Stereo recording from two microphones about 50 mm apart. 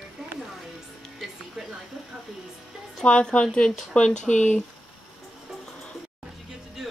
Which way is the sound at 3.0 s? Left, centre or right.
Left.